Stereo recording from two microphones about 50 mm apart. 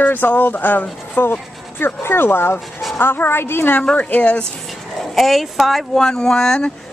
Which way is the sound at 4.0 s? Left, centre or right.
Left.